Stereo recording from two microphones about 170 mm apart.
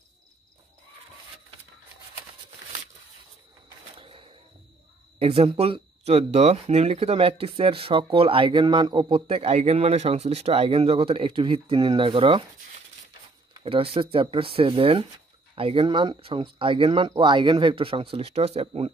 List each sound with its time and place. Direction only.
3.9 s cash register: 30° right (ahead or behind)
5.2 s speech: 35° right (ahead or behind)
13.5 s speech: 30° right (ahead or behind)